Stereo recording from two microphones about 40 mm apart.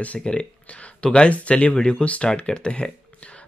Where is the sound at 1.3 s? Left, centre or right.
Left.